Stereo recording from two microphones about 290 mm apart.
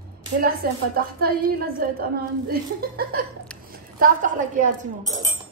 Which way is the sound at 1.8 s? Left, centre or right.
Right.